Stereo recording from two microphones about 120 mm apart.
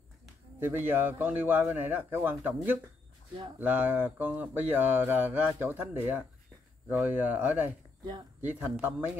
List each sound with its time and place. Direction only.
0.6 s speech: 20° right (ahead or behind)
8.7 s speech: 15° right (ahead or behind)